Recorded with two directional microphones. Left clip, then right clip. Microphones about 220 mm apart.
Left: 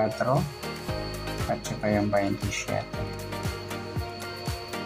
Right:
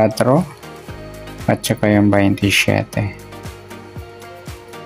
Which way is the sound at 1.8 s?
60° right (ahead or behind).